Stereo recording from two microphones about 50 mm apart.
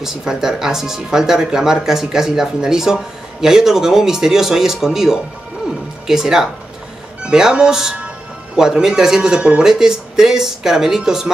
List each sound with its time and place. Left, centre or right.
0.0 s speech: centre